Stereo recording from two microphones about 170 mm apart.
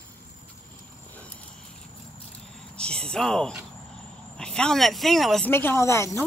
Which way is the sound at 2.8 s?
5° left (ahead or behind).